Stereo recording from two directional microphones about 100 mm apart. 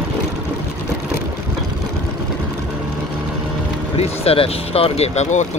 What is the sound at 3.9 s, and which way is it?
Speech, 90° left.